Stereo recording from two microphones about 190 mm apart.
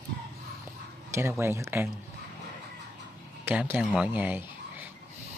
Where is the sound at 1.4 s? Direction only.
15° right (ahead or behind).